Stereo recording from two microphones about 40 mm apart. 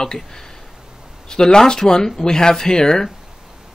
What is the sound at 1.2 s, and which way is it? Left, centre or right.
Speech, centre.